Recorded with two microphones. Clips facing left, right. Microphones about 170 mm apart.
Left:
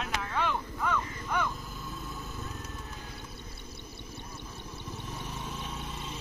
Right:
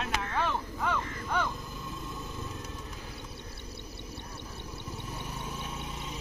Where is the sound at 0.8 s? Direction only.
25° right (ahead or behind).